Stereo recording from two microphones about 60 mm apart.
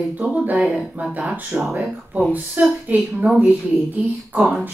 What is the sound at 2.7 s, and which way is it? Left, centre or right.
A woman's voice, right.